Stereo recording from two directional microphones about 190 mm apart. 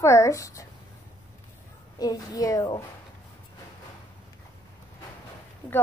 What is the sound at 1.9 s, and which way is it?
Speech, 20° left (ahead or behind).